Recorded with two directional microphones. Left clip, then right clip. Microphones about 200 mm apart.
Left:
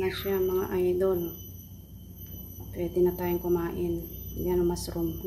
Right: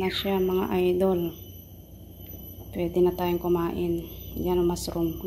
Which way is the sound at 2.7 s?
20° right (ahead or behind).